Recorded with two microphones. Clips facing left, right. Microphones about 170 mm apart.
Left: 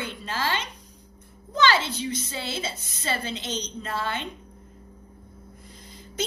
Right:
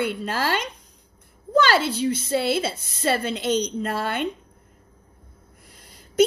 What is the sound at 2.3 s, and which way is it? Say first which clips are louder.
A woman's voice: right 10 dB; 65° right (ahead or behind).